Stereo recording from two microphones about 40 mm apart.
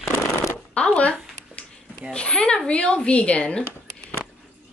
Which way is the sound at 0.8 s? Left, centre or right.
Left.